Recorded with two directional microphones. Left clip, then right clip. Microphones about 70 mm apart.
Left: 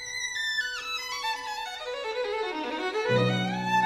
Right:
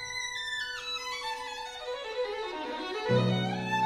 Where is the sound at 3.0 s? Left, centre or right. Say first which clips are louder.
Left 3 dB; right.